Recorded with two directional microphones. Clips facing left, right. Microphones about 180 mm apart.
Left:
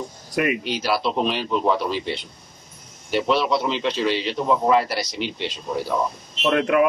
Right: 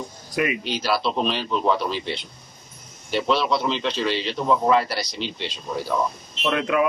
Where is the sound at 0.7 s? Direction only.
5° left (ahead or behind).